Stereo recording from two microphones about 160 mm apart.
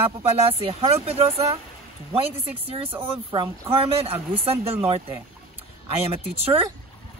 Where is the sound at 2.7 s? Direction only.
35° right (ahead or behind).